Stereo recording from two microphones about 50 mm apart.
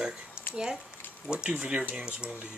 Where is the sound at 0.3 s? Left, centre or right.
Left.